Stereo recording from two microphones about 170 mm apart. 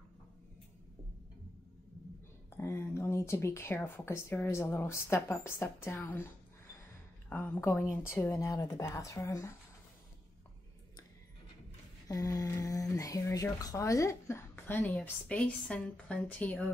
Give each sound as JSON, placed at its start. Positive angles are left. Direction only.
{"t": 2.5, "sound": "speech", "side_deg": 15}
{"t": 7.2, "sound": "speech", "side_deg": 10}
{"t": 12.1, "sound": "speech", "side_deg": 20}